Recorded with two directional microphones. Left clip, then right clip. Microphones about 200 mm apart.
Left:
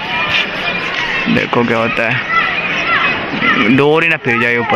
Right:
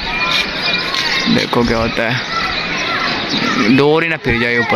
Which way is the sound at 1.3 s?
5° right (ahead or behind).